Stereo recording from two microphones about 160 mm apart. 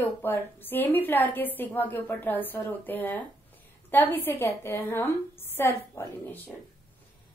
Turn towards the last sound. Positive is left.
turn(degrees=10)  # may be behind; listen again after turning